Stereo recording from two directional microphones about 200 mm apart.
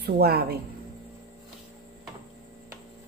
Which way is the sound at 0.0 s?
50° right (ahead or behind).